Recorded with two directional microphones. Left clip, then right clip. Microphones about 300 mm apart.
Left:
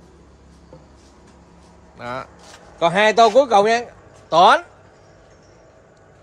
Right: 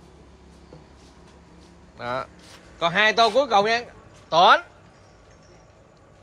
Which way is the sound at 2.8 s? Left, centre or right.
Centre.